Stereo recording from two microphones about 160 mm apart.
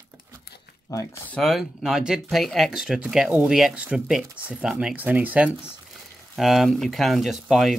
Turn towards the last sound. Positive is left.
turn(degrees=0)  # may be behind; listen again after turning